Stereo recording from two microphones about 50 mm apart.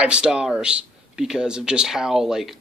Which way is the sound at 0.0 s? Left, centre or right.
Centre.